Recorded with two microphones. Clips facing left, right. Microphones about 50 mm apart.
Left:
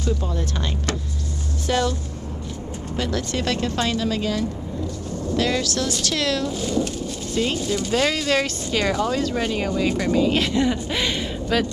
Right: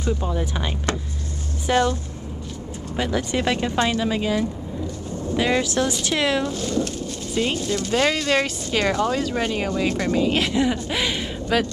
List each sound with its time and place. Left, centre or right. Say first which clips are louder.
0.0 s speech: right 1 dB; centre
3.0 s speech: right 2 dB; centre
6.4 s speech: left 1 dB; centre